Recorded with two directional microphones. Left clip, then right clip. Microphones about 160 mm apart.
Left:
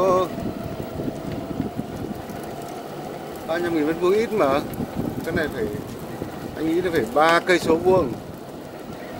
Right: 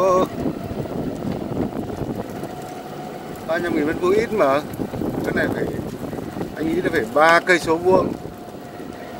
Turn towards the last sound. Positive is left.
turn(degrees=5)  # may be behind; listen again after turning